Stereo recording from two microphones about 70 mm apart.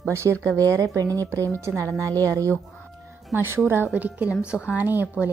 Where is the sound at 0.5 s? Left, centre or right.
Right.